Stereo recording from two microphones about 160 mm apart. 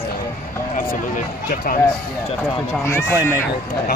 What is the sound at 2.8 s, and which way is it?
Speech, 15° left (ahead or behind).